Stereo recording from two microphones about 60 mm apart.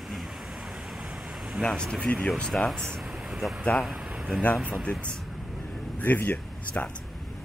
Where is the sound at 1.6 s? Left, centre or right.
Centre.